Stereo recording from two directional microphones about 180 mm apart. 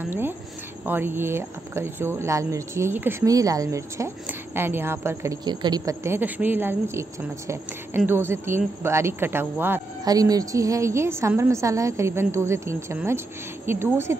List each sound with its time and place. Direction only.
0.8 s speech: 10° right (ahead or behind)